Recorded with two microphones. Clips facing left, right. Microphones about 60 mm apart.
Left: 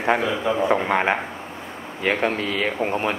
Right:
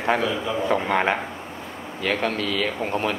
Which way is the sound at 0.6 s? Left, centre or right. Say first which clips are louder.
Even; centre.